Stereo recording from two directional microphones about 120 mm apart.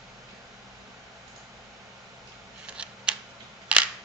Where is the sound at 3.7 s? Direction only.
10° right (ahead or behind).